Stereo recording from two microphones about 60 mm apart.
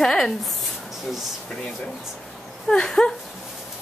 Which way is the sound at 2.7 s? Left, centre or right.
Centre.